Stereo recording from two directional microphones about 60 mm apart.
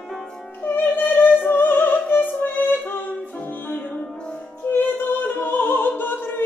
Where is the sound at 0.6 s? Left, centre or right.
Left.